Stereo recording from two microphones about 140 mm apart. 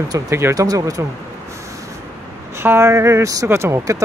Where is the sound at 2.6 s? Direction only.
15° right (ahead or behind).